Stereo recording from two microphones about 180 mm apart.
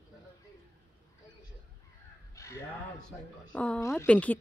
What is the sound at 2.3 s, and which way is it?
Speech, 15° left (ahead or behind).